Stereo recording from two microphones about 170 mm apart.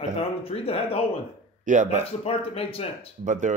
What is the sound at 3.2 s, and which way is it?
Speech, 50° right (ahead or behind).